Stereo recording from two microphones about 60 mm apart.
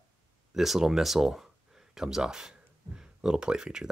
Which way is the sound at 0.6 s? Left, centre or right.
Centre.